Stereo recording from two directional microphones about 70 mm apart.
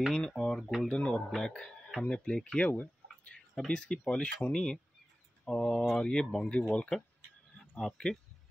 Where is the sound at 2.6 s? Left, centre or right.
Left.